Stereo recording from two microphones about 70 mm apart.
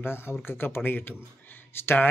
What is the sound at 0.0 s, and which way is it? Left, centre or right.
A man's voice, left.